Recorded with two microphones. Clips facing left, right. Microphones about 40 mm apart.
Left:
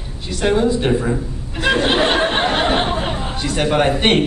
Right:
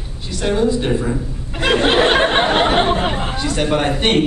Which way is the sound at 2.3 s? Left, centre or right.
Right.